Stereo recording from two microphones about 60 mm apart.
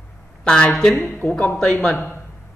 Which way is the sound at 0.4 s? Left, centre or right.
Centre.